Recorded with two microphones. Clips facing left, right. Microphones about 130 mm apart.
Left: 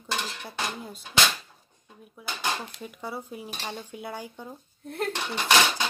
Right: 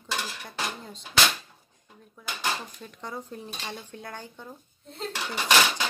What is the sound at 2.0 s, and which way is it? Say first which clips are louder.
Speech: even; 10° left (ahead or behind).